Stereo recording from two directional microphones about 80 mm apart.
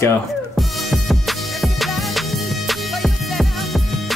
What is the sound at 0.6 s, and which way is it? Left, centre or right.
Music, centre.